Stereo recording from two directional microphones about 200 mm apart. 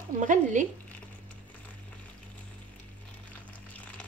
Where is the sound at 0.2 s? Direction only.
40° right (ahead or behind).